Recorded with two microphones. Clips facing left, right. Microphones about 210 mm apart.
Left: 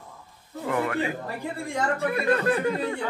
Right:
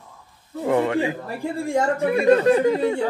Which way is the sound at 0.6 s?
25° right (ahead or behind).